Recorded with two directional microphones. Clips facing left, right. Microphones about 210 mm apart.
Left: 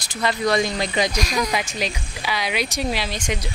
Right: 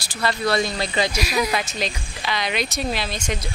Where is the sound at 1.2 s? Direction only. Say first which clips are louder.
Right 1 dB; 5° right (ahead or behind).